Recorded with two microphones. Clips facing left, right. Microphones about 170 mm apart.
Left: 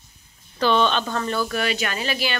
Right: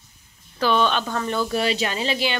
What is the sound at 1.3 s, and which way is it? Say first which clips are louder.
Speech: right 4 dB; 25° right (ahead or behind).